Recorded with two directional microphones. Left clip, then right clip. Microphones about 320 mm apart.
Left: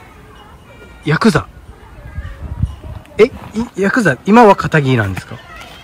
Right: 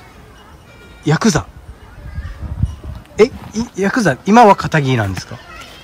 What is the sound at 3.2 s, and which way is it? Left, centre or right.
Speech, centre.